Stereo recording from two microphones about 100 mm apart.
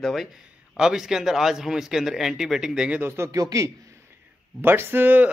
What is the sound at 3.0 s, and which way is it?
Speech, 25° right (ahead or behind).